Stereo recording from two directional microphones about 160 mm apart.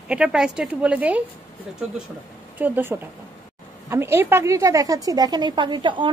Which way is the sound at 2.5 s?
10° right (ahead or behind).